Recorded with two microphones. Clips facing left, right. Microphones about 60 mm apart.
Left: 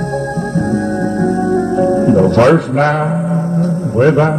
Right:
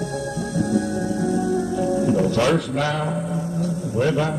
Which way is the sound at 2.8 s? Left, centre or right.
Left.